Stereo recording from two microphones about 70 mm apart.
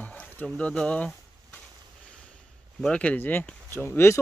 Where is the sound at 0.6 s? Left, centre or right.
Centre.